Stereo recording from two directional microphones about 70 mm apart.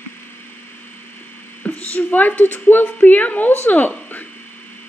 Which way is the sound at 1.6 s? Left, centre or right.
Left.